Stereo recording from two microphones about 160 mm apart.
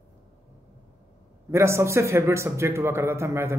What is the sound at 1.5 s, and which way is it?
A man's voice, 15° right (ahead or behind).